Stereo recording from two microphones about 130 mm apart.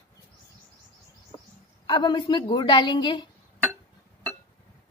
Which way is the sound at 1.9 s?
35° left (ahead or behind).